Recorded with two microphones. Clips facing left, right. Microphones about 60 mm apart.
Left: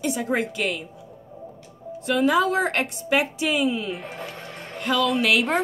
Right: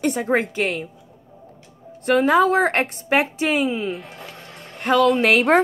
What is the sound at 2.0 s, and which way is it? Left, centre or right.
A woman's voice, right.